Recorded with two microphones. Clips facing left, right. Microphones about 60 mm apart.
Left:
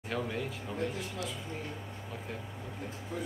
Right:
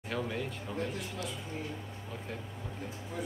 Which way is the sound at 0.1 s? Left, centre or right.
Centre.